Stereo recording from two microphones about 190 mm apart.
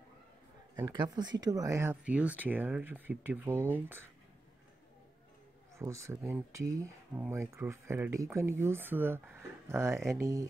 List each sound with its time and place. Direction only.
0.7 s speech: 20° right (ahead or behind)
5.8 s speech: 15° right (ahead or behind)